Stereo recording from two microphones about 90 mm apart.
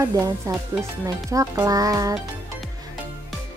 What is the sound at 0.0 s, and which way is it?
Speech, 35° right (ahead or behind).